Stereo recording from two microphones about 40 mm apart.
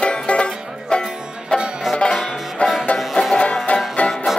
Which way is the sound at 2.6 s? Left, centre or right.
Left.